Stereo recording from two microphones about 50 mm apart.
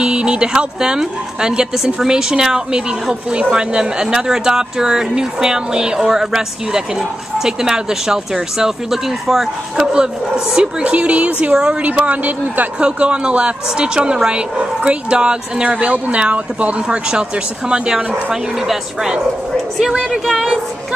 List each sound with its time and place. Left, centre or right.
0.0 s a woman's voice: centre
9.9 s a woman's voice: centre